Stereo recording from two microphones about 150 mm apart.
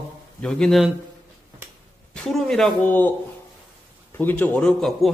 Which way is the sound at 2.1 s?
5° left (ahead or behind).